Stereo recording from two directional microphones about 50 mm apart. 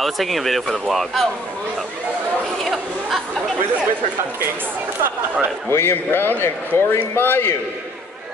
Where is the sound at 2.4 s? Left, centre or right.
Centre.